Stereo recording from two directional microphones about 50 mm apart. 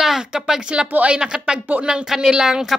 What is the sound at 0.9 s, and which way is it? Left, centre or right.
Speech, right.